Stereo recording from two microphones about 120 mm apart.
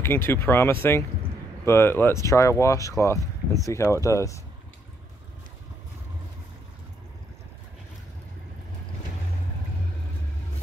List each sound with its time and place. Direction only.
0.0 s speech: 20° left (ahead or behind)